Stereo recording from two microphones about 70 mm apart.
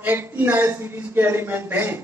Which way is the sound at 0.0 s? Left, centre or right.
Right.